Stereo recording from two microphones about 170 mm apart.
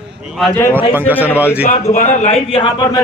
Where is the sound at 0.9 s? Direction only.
10° right (ahead or behind).